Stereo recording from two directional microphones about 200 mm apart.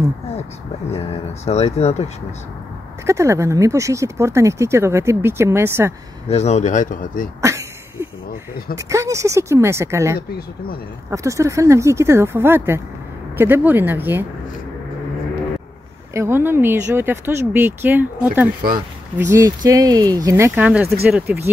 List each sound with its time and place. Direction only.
0.9 s speech: 30° left (ahead or behind)
3.1 s speech: 15° right (ahead or behind)
6.2 s speech: 35° left (ahead or behind)
7.4 s a sound: 15° right (ahead or behind)
8.7 s speech: 15° right (ahead or behind)
16.1 s speech: 15° right (ahead or behind)
19.1 s speech: 15° right (ahead or behind)